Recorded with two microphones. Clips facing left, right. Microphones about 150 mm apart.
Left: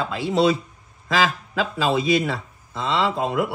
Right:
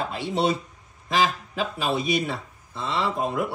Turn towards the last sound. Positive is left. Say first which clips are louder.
# left 3 dB
turn(degrees=90)